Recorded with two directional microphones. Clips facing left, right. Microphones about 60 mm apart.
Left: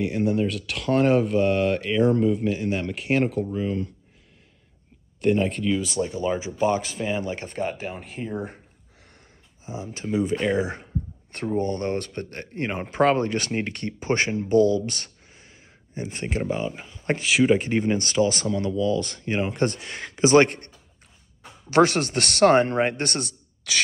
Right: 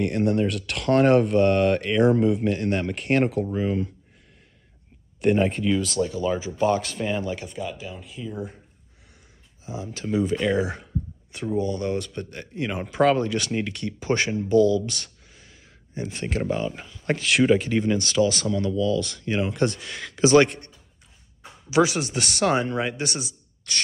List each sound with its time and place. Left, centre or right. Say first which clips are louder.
0.0 s speech: right 1 dB; centre
5.2 s speech: right 1 dB; centre
5.9 s speech: right 1 dB; left
6.8 s speech: even; centre
7.4 s speech: left 4 dB; left
9.7 s speech: even; left
11.5 s speech: even; left
21.6 s speech: left 2 dB; left
23.6 s a sound: left 4 dB; left